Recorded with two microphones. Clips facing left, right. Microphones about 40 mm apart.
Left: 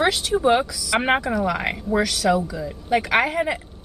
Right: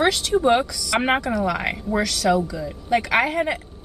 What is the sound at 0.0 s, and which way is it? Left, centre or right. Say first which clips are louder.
Speech: right 1 dB; centre.